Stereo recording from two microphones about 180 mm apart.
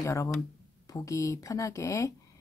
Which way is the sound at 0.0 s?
15° left (ahead or behind).